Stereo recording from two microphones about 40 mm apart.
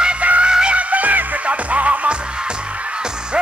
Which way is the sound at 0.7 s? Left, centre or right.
Right.